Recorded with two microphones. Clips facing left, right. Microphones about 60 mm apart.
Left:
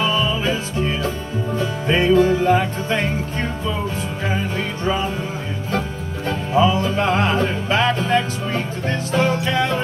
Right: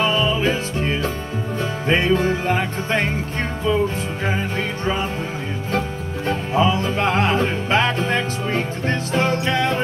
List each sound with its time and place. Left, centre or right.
0.0 s music: right
4.3 s music: right
6.2 s music: right